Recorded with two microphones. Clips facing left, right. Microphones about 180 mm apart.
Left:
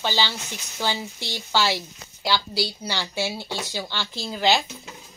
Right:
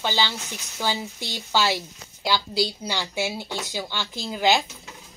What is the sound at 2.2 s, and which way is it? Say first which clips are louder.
Speech: right 1 dB; 15° right (ahead or behind).